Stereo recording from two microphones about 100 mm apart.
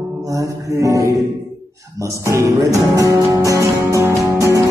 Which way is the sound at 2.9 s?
35° right (ahead or behind).